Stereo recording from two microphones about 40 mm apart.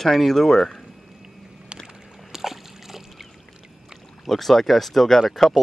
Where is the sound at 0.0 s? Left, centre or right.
Centre.